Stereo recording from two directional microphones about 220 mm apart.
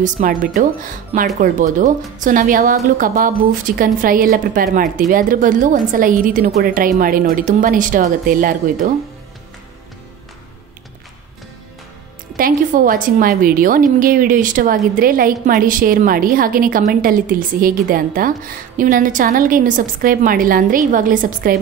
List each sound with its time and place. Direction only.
0.0 s a woman's voice: 40° right (ahead or behind)
12.4 s a woman's voice: 40° right (ahead or behind)